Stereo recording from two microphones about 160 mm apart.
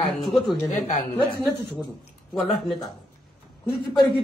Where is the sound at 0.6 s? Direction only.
45° left (ahead or behind).